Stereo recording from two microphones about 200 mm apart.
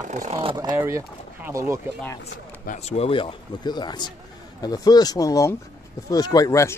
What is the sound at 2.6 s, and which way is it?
A man's voice, 35° left (ahead or behind).